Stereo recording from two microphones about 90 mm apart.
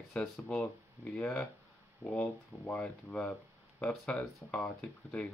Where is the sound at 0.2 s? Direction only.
10° left (ahead or behind).